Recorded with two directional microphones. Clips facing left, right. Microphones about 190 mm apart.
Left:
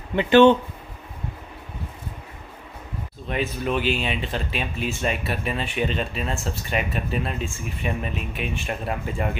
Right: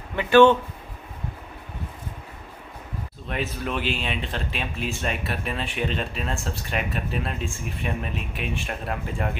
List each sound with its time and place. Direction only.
0.1 s speech: 20° left (ahead or behind)
3.3 s speech: centre (ahead or behind)